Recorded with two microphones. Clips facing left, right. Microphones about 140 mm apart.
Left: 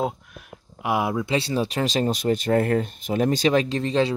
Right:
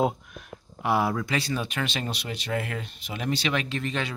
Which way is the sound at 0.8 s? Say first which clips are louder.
Left 1 dB; 15° left (ahead or behind).